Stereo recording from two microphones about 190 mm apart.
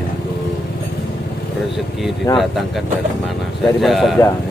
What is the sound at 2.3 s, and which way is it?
Speech, 15° left (ahead or behind).